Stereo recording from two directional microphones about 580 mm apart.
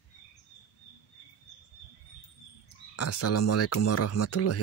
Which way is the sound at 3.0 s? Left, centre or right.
Left.